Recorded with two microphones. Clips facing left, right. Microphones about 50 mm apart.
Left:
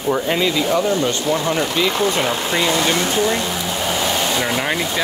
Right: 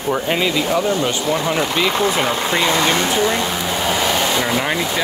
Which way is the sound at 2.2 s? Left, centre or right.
Right.